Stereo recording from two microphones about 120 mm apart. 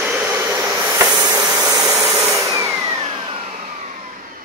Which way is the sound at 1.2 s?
30° right (ahead or behind).